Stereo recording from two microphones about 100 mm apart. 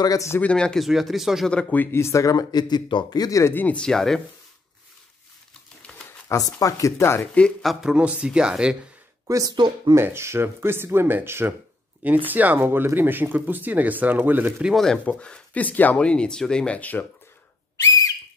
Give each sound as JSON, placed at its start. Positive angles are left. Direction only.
{"t": 0.0, "sound": "speech", "side_deg": 35}
{"t": 0.4, "sound": "speech", "side_deg": 10}
{"t": 0.8, "sound": "speech", "side_deg": 0}
{"t": 1.5, "sound": "speech", "side_deg": 15}
{"t": 3.5, "sound": "speech", "side_deg": 15}
{"t": 5.9, "sound": "a sound", "side_deg": 10}
{"t": 6.2, "sound": "speech", "side_deg": 35}
{"t": 7.6, "sound": "speech", "side_deg": -10}
{"t": 9.3, "sound": "speech", "side_deg": -40}
{"t": 9.9, "sound": "speech", "side_deg": -25}
{"t": 14.6, "sound": "speech", "side_deg": 0}
{"t": 15.0, "sound": "speech", "side_deg": 10}